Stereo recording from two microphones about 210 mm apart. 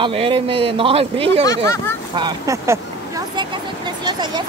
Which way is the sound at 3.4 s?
20° right (ahead or behind).